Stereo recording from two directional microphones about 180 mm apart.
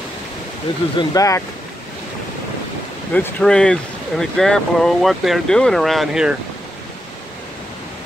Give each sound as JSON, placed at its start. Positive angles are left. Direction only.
{"t": 0.9, "sound": "speech", "side_deg": 20}
{"t": 3.1, "sound": "speech", "side_deg": 10}